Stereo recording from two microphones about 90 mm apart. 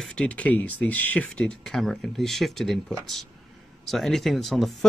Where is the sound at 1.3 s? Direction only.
5° left (ahead or behind).